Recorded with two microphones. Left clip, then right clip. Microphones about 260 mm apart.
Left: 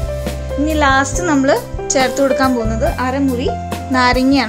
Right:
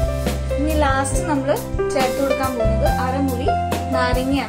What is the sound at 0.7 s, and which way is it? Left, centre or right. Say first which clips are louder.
Speech: left 6 dB; left.